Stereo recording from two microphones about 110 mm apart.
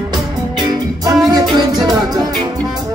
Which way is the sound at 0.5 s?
40° right (ahead or behind).